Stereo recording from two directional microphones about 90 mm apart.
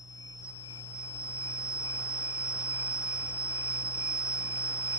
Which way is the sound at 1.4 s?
35° left (ahead or behind).